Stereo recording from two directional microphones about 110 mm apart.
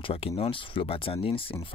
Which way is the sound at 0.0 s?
60° left (ahead or behind).